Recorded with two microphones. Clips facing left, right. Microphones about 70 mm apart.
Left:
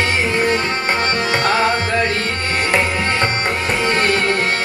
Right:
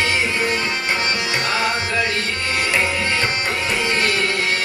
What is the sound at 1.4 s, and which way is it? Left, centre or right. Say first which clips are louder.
Music: left 6 dB; left.